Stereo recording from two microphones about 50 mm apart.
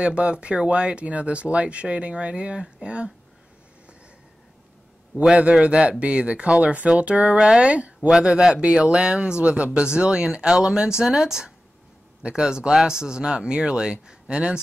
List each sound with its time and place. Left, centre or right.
0.0 s speech: right
5.4 s speech: right
7.3 s speech: centre
7.6 s speech: right